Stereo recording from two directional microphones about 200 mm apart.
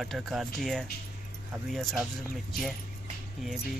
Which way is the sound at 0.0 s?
Centre (ahead or behind).